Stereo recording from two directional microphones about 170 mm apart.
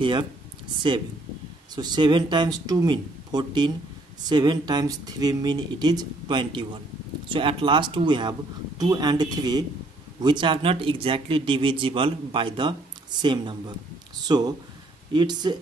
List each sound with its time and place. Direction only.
0.0 s speech: 30° right (ahead or behind)
1.8 s speech: 25° right (ahead or behind)